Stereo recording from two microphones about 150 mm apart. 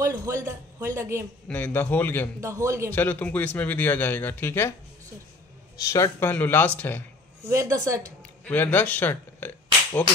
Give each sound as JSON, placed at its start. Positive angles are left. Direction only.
{"t": 0.0, "sound": "speech", "side_deg": -20}
{"t": 1.5, "sound": "speech", "side_deg": 10}
{"t": 2.4, "sound": "speech", "side_deg": -20}
{"t": 2.9, "sound": "speech", "side_deg": 10}
{"t": 5.8, "sound": "speech", "side_deg": 20}
{"t": 7.4, "sound": "speech", "side_deg": -20}
{"t": 8.5, "sound": "speech", "side_deg": 10}